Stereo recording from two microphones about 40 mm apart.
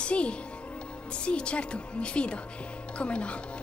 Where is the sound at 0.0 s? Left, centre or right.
Left.